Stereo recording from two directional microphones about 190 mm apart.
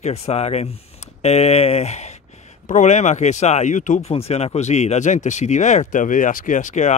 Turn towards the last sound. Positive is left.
turn(degrees=40)  # may be behind; listen again after turning